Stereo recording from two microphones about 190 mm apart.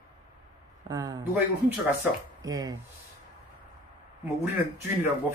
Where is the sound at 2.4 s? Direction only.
20° right (ahead or behind).